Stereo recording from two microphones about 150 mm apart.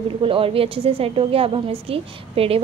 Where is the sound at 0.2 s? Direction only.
35° right (ahead or behind).